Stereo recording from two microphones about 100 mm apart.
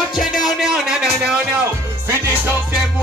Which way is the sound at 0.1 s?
5° right (ahead or behind).